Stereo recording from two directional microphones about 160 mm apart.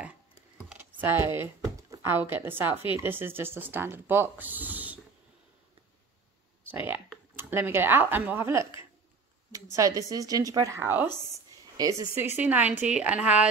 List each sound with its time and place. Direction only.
0.6 s computer keyboard: 10° right (ahead or behind)
1.4 s speech: 20° right (ahead or behind)
6.7 s a woman's voice: 10° right (ahead or behind)